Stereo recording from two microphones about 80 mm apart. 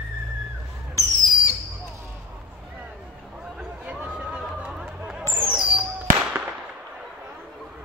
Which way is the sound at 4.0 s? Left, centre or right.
Centre.